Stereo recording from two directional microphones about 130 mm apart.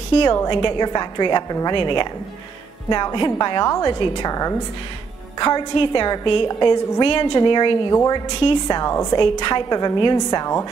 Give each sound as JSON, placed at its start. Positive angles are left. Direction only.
{"t": 0.2, "sound": "a woman's voice", "side_deg": 35}